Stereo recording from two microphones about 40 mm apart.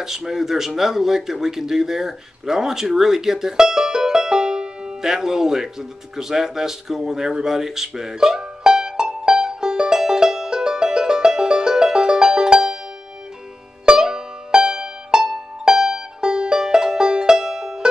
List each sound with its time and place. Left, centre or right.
0.0 s speech: centre
7.4 s music: centre
13.8 s music: centre